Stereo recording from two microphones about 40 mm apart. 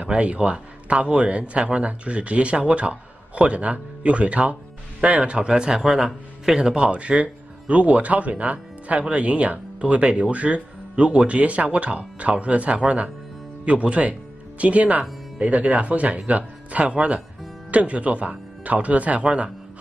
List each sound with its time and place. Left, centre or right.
0.0 s a man's voice: right
5.5 s a man's voice: centre
6.8 s speech: right